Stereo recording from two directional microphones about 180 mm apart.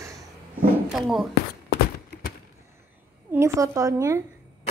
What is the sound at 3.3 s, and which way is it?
Speech, 15° right (ahead or behind).